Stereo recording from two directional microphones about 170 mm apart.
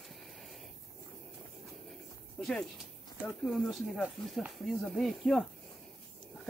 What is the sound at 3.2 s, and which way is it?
Speech, centre (ahead or behind).